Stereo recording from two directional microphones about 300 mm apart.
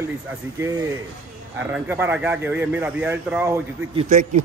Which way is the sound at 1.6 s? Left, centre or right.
Centre.